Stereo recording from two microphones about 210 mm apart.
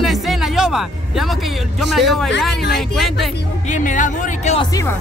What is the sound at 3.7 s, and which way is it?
Speech, 35° left (ahead or behind).